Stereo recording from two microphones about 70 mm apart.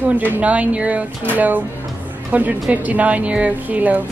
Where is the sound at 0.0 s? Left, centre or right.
Right.